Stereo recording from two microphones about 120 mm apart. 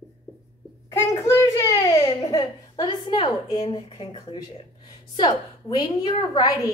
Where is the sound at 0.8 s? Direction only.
25° left (ahead or behind).